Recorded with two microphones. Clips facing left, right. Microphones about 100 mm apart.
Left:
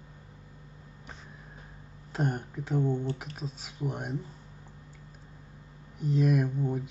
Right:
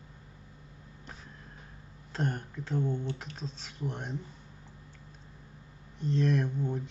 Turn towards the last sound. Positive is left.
turn(degrees=10)  # may be behind; listen again after turning